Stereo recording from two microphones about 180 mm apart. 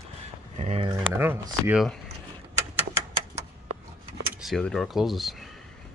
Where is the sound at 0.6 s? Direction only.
35° right (ahead or behind).